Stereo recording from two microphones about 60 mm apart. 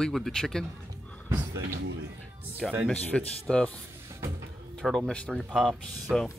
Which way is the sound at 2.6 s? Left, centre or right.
Centre.